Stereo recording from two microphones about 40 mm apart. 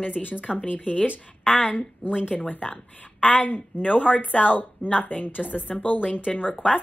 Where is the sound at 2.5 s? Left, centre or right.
Left.